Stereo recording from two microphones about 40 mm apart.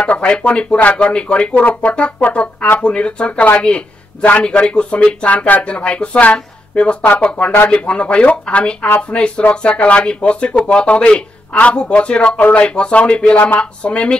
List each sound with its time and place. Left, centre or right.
0.0 s speech: left
1.5 s speech: left
2.0 s speech: left
4.2 s speech: left
4.5 s speech: left